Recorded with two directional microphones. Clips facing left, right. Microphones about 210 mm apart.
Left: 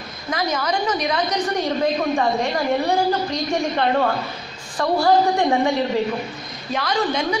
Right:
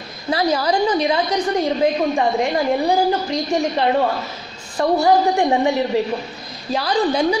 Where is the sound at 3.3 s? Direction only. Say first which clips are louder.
Right 2 dB; 20° right (ahead or behind).